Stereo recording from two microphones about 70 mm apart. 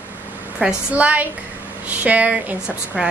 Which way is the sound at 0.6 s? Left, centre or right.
Right.